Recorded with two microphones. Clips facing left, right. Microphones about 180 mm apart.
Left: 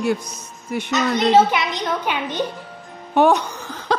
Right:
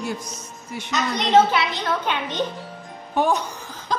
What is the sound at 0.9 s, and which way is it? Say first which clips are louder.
Speech: left 4 dB; 5° left (ahead or behind).